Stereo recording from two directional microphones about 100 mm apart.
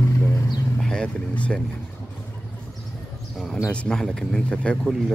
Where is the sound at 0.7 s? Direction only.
10° left (ahead or behind).